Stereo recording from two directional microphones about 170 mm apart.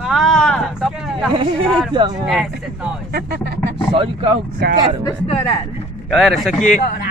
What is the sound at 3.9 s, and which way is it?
Speech, 30° right (ahead or behind).